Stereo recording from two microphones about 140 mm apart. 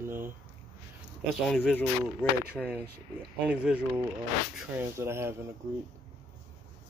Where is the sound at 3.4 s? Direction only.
10° right (ahead or behind).